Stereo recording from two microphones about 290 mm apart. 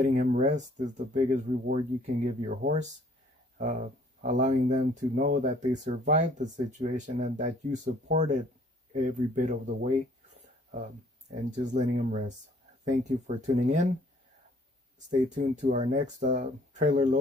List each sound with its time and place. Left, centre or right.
0.0 s speech: right
11.5 s speech: right
15.2 s speech: right